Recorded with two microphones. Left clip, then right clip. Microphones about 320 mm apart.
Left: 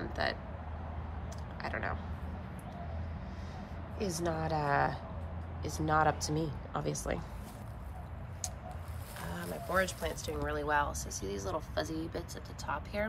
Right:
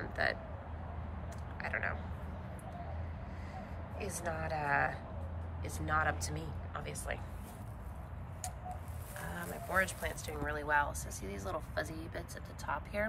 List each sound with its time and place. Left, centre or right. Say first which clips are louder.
0.0 s a sound: even; centre
1.6 s speech: even; centre
4.0 s speech: left 4 dB; centre
9.2 s speech: left 2 dB; centre